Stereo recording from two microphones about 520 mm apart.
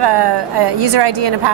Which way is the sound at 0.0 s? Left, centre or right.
Right.